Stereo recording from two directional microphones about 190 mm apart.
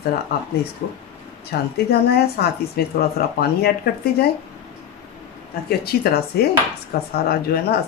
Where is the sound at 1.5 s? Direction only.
50° left (ahead or behind).